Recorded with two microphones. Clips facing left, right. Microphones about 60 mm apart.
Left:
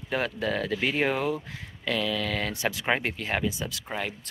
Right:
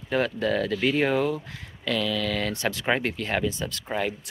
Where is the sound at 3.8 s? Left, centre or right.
Centre.